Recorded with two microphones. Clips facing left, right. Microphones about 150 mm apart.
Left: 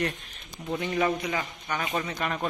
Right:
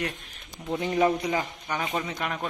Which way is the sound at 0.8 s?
25° right (ahead or behind).